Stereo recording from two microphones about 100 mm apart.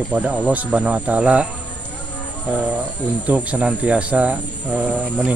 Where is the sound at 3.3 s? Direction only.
15° right (ahead or behind).